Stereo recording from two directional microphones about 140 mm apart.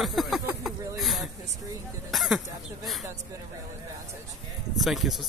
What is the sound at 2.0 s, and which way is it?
Speech, centre (ahead or behind).